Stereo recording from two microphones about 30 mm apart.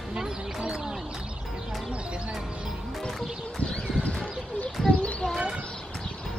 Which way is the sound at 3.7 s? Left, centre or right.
Left.